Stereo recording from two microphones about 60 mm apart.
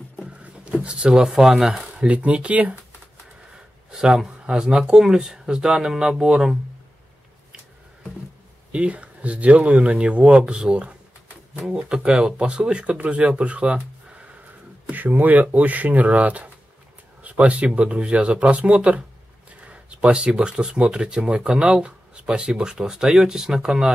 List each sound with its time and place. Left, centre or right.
0.2 s a sound: centre
0.8 s speech: centre
2.0 s speech: right
3.9 s speech: centre
8.7 s speech: right
14.9 s speech: right; by 23.9 s centre